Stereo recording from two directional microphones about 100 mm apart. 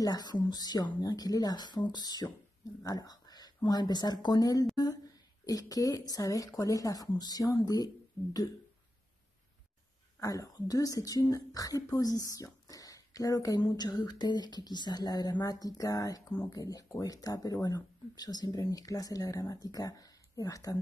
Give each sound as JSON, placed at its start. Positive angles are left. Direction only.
{"t": 0.0, "sound": "speech", "side_deg": 40}
{"t": 10.2, "sound": "speech", "side_deg": 35}